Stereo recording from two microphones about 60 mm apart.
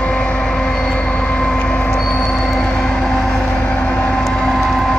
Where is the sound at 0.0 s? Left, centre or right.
Centre.